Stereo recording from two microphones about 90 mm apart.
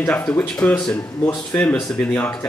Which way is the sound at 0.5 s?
15° left (ahead or behind).